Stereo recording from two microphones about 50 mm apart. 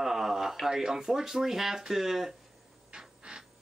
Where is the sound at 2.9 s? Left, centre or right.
Centre.